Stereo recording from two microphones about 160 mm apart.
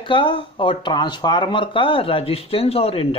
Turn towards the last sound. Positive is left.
turn(degrees=35)  # may be behind; listen again after turning